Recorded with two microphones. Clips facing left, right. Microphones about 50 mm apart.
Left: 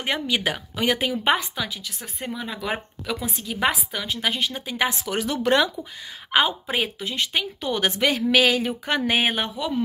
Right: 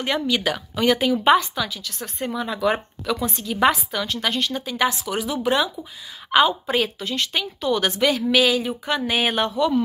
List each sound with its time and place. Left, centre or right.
0.0 s speech: left
2.3 s a woman's voice: centre
3.9 s speech: centre
5.0 s speech: left
6.3 s a woman's voice: left
9.4 s speech: centre